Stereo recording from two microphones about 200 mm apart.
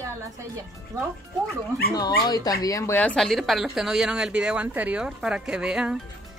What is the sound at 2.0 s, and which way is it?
Speech, 20° left (ahead or behind).